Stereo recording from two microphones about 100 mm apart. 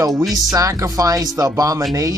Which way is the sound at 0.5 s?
30° right (ahead or behind).